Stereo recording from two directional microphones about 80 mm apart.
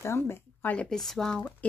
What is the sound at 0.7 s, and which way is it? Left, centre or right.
Speech, centre.